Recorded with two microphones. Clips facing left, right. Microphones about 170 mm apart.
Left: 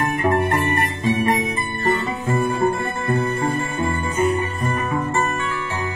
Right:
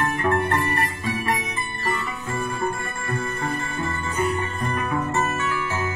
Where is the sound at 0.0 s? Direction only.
15° left (ahead or behind).